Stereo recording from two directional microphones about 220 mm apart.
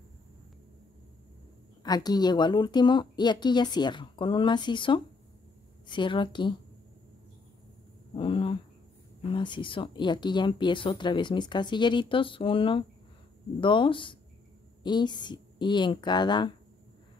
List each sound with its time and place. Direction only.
1.8 s speech: 20° left (ahead or behind)
8.2 s a sound: 25° left (ahead or behind)
9.3 s speech: 20° left (ahead or behind)